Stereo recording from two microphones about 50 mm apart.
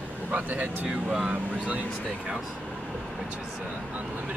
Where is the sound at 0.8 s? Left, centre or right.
Centre.